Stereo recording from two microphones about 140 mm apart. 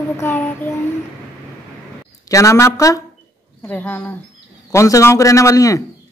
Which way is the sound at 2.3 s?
20° left (ahead or behind).